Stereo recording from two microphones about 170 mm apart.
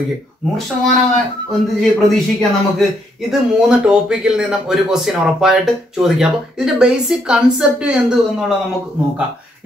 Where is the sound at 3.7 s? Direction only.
5° right (ahead or behind).